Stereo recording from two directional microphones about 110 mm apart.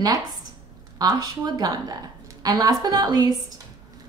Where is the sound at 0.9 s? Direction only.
35° right (ahead or behind).